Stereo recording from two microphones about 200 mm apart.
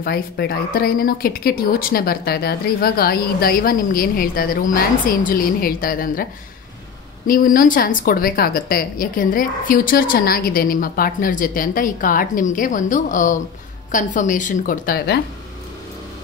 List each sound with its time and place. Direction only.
0.0 s speech: 50° left (ahead or behind)
7.2 s speech: 45° left (ahead or behind)